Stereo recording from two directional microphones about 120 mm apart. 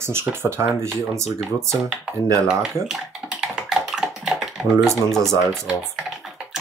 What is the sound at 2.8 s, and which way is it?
Typing, 5° right (ahead or behind).